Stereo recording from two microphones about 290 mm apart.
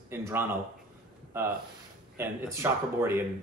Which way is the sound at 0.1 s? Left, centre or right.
Centre.